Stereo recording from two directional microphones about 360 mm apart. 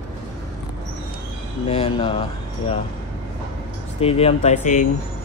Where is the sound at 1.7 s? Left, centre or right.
Centre.